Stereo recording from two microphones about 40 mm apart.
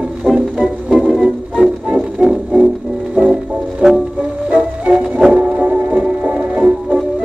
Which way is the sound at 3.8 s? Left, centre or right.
Centre.